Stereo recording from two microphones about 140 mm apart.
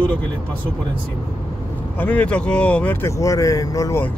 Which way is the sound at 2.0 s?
10° left (ahead or behind).